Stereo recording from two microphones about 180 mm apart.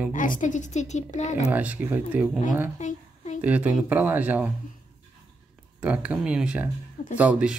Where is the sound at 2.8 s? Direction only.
40° left (ahead or behind).